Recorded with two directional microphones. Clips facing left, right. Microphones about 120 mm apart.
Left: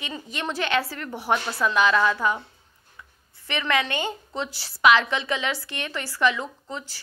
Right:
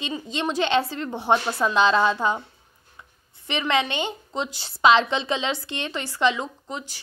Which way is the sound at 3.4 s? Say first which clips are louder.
Right 2 dB; 20° right (ahead or behind).